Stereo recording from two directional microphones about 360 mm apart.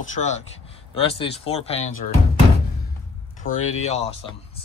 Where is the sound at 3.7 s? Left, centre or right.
Centre.